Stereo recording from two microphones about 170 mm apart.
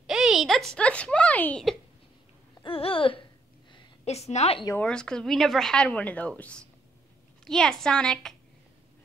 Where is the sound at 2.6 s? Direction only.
35° left (ahead or behind).